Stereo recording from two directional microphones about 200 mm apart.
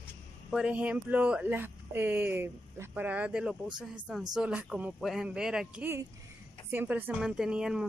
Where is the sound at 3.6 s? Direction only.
20° right (ahead or behind).